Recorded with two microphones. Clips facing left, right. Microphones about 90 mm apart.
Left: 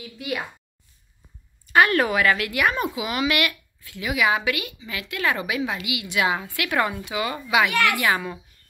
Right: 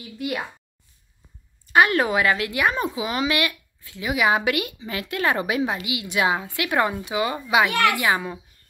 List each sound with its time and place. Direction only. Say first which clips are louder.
1.7 s a woman's voice: even; 20° right (ahead or behind)